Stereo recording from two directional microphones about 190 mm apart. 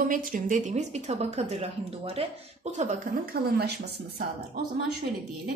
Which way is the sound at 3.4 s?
55° right (ahead or behind).